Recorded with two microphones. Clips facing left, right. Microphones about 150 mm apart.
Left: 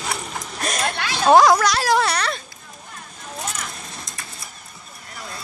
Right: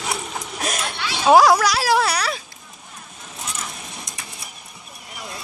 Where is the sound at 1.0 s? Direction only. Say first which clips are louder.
Left 2 dB; 50° left (ahead or behind).